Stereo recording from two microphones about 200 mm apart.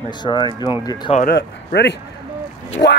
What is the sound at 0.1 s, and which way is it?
Speech, 20° left (ahead or behind).